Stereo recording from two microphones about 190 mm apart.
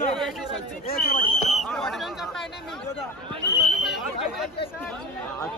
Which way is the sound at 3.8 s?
Centre (ahead or behind).